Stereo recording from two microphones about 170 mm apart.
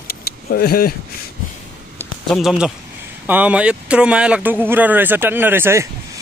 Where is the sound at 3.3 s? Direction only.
10° right (ahead or behind).